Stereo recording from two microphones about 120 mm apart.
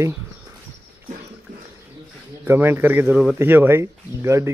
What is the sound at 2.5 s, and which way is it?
A man's voice, 20° right (ahead or behind).